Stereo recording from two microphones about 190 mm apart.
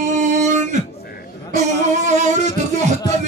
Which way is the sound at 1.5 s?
35° right (ahead or behind).